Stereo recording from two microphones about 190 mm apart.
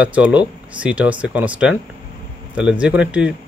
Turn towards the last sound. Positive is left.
turn(degrees=-5)  # may be behind; listen again after turning